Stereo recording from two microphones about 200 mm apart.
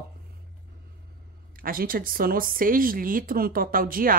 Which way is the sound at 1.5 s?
45° right (ahead or behind).